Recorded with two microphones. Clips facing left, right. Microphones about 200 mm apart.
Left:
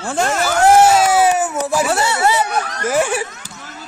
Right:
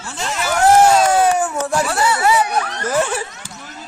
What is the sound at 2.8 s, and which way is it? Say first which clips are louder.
Speech: left 4 dB; 10° left (ahead or behind).